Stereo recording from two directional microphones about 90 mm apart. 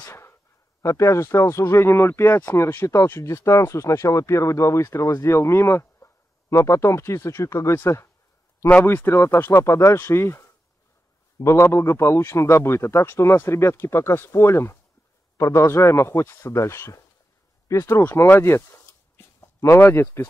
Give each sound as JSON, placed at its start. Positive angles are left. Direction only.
{"t": 0.1, "sound": "a sound", "side_deg": 30}
{"t": 0.8, "sound": "speech", "side_deg": 35}
{"t": 8.6, "sound": "a man's voice", "side_deg": 20}